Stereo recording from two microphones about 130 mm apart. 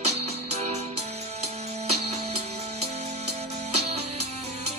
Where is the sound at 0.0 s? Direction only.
55° right (ahead or behind).